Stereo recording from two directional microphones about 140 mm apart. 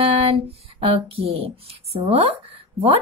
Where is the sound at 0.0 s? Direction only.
40° right (ahead or behind).